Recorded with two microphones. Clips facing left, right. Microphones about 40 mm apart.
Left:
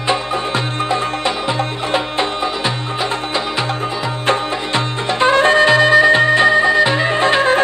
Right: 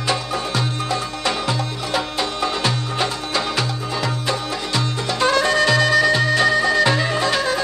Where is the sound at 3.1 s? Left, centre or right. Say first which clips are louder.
Left 4 dB; left.